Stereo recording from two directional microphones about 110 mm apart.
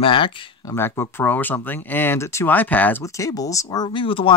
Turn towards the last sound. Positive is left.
turn(degrees=50)  # may be behind; listen again after turning